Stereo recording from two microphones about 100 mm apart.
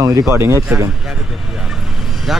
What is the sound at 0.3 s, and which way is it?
Speech, 25° right (ahead or behind).